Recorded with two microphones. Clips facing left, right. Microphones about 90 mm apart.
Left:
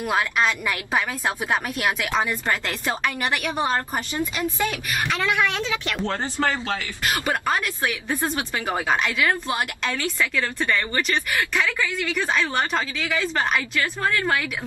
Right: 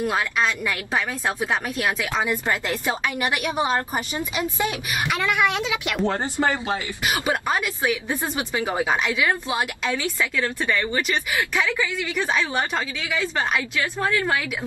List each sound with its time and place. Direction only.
2.2 s a woman's voice: 15° right (ahead or behind)